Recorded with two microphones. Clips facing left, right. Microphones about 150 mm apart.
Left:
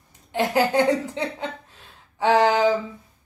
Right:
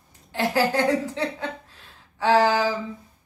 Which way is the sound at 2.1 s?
20° left (ahead or behind).